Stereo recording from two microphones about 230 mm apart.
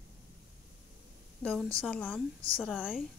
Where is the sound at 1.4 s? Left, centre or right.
Centre.